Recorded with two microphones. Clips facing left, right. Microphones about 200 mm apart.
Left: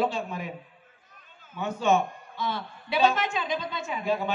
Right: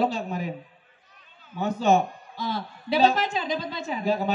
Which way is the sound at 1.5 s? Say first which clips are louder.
Right 3 dB; 35° right (ahead or behind).